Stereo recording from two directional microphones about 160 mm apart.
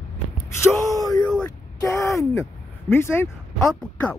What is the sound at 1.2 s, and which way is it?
Speech, 10° left (ahead or behind).